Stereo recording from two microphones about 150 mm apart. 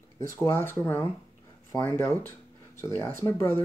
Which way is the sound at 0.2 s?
20° left (ahead or behind).